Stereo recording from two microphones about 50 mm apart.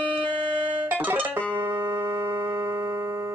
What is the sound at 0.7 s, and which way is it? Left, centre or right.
Music, right.